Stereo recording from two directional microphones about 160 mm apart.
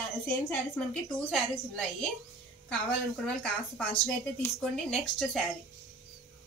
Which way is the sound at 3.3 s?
5° left (ahead or behind).